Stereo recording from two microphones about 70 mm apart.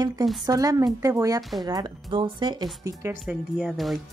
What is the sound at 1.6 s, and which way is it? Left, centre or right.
Speech, right.